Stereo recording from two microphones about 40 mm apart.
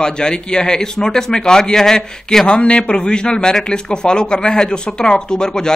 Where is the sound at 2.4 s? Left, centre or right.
Left.